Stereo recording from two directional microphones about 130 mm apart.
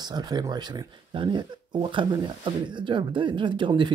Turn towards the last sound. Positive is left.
turn(degrees=-35)  # may be behind; listen again after turning